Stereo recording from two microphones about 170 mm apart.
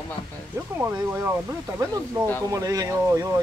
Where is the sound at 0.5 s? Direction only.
15° right (ahead or behind).